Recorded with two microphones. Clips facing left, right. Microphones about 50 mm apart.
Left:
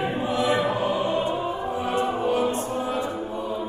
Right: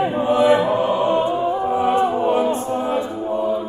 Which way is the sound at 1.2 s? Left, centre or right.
Right.